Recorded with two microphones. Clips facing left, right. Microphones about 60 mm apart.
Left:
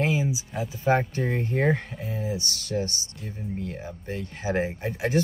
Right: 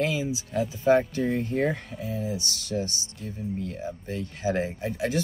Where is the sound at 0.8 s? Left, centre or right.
Left.